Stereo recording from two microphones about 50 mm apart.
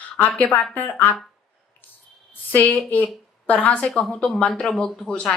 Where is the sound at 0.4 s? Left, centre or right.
Left.